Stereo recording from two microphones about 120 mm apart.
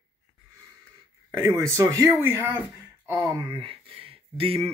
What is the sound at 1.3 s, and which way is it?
Speech, 25° right (ahead or behind).